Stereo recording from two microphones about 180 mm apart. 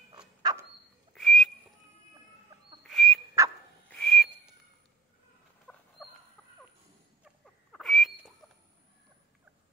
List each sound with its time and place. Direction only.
0.4 s dog: 20° right (ahead or behind)
1.1 s whistling: centre (ahead or behind)
2.9 s frog: centre (ahead or behind)
3.4 s a sound: 20° right (ahead or behind)
3.9 s whistle: 5° left (ahead or behind)
5.7 s rodents: 5° left (ahead or behind)
7.7 s a sound: centre (ahead or behind)